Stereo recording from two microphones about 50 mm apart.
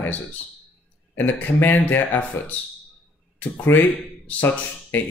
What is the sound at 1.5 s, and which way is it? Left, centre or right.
Speech, left.